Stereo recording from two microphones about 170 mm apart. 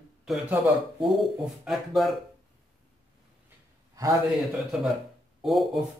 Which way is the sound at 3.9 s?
20° right (ahead or behind).